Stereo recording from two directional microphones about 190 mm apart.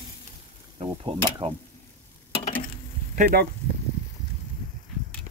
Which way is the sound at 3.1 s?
40° right (ahead or behind).